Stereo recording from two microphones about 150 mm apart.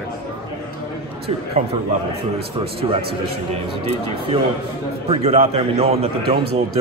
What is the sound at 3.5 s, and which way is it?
A man's voice, 40° right (ahead or behind).